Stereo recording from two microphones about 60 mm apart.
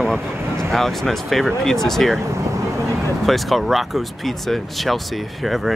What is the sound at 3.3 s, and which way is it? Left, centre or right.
Speech, centre.